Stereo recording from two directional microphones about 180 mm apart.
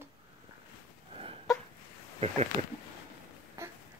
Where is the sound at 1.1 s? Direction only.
30° right (ahead or behind).